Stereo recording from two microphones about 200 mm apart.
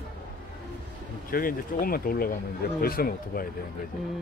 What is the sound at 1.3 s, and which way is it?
Speech, 45° left (ahead or behind).